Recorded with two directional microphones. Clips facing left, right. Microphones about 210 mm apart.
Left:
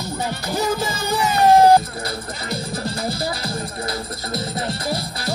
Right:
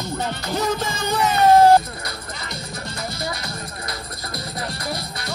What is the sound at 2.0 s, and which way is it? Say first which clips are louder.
Music: left 5 dB; 30° left (ahead or behind).